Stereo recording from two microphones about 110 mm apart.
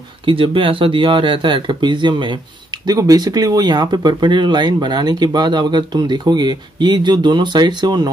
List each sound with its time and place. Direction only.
0.2 s speech: 55° right (ahead or behind)
2.9 s speech: 35° right (ahead or behind)